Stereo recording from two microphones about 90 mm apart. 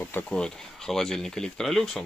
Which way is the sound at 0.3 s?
5° left (ahead or behind).